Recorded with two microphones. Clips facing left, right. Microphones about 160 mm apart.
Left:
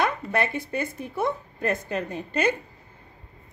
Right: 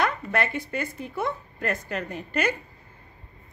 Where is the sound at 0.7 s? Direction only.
20° left (ahead or behind).